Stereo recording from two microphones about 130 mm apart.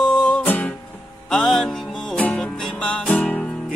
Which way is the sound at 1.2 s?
5° left (ahead or behind).